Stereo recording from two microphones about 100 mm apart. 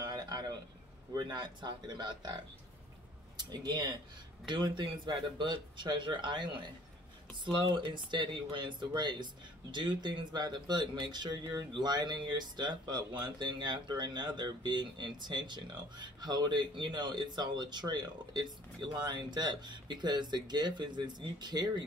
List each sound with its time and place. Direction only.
0.0 s a sound: 40° right (ahead or behind)
1.1 s speech: 50° right (ahead or behind)
7.8 s speech: 50° right (ahead or behind)